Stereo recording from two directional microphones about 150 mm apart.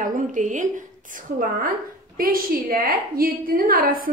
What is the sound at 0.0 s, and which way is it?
A woman's voice, 55° right (ahead or behind).